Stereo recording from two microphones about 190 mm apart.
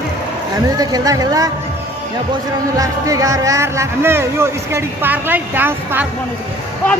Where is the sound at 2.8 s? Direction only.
15° right (ahead or behind).